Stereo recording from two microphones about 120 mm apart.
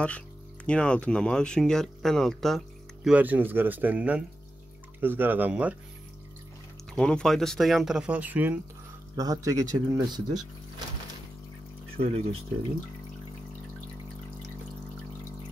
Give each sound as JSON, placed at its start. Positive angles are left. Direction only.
{"t": 0.7, "sound": "speech", "side_deg": 10}
{"t": 7.0, "sound": "speech", "side_deg": 5}
{"t": 9.1, "sound": "speech", "side_deg": -30}
{"t": 12.0, "sound": "speech", "side_deg": -55}